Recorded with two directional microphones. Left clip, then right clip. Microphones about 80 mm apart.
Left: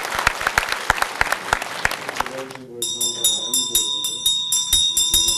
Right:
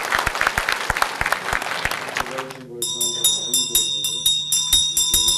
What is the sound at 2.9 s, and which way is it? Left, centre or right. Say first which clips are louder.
Bell: right 1 dB; centre.